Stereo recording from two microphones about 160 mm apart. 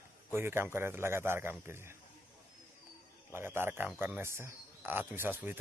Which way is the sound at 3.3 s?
15° right (ahead or behind).